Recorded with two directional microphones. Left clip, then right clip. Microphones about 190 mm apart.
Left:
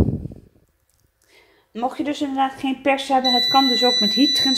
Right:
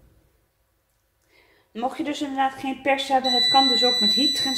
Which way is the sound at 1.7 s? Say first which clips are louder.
Left 3 dB; 30° left (ahead or behind).